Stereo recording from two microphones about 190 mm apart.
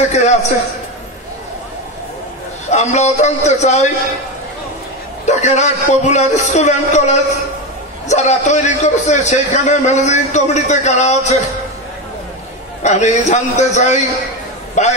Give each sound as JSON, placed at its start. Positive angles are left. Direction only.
{"t": 0.1, "sound": "a man's voice", "side_deg": 35}
{"t": 2.7, "sound": "a man's voice", "side_deg": 35}
{"t": 5.2, "sound": "a man's voice", "side_deg": 40}
{"t": 12.8, "sound": "a man's voice", "side_deg": 40}